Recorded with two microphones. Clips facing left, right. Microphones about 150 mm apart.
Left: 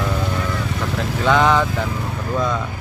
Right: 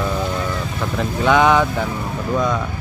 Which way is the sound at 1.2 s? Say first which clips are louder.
Right 2 dB; 10° right (ahead or behind).